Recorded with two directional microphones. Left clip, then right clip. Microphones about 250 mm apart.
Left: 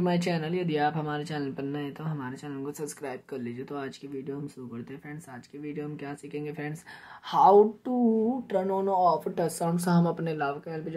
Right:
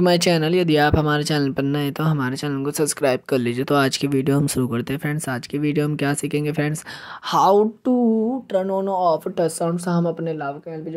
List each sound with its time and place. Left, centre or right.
0.0 s speech: right